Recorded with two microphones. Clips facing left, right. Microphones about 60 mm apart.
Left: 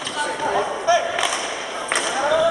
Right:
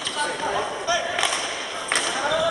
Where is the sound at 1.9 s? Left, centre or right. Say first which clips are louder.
Left 4 dB; centre.